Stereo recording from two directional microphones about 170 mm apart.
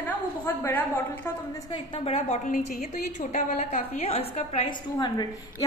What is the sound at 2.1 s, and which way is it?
A woman's voice, 40° left (ahead or behind).